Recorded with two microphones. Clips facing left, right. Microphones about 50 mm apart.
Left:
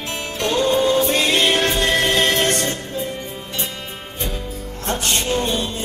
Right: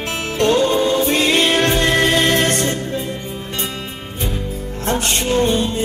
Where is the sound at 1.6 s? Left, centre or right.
Right.